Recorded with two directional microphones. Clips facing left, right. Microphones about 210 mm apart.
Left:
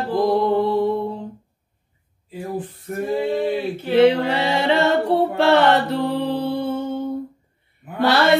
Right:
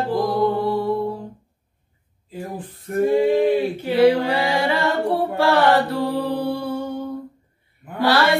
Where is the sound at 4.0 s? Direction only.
20° left (ahead or behind).